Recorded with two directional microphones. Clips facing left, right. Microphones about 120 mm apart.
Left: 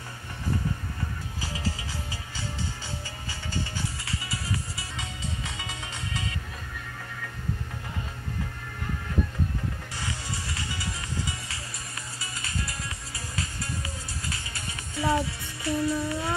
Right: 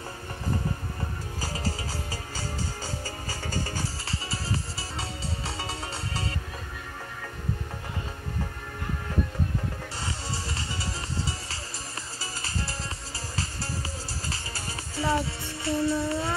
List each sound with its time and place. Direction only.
1.4 s music: 40° right (ahead or behind)
3.3 s music: 40° right (ahead or behind)
10.0 s music: 30° right (ahead or behind)
14.3 s music: 30° right (ahead or behind)